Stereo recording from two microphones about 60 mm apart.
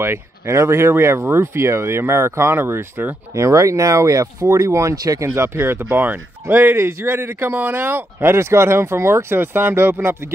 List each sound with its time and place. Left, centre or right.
0.0 s speech: right
2.6 s a man's voice: right
3.3 s speech: right
4.9 s speech: right
5.2 s a man's voice: right